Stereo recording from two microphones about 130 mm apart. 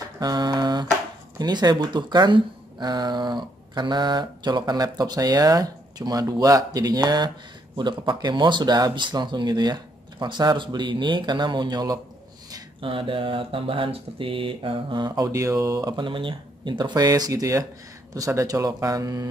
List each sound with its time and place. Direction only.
0.2 s a sound: 35° right (ahead or behind)
1.4 s speech: 35° right (ahead or behind)
12.8 s speech: 40° right (ahead or behind); by 15.9 s 25° right (ahead or behind)
16.0 s speech: 40° right (ahead or behind)